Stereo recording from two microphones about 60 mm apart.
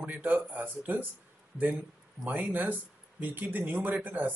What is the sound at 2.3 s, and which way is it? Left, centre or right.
Speech, right.